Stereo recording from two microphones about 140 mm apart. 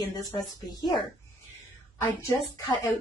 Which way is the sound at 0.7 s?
30° left (ahead or behind).